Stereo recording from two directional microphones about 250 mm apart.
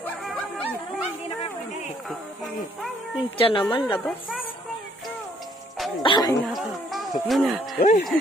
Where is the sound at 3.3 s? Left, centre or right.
Left.